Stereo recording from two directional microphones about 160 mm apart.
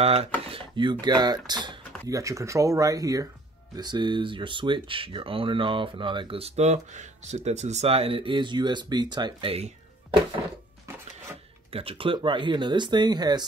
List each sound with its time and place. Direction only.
0.0 s speech: 40° right (ahead or behind)
0.5 s a sound: 30° right (ahead or behind)
1.0 s speech: 25° right (ahead or behind)
11.7 s speech: 35° right (ahead or behind)